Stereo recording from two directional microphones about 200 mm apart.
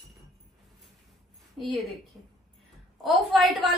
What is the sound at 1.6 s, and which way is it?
A woman's voice, centre (ahead or behind).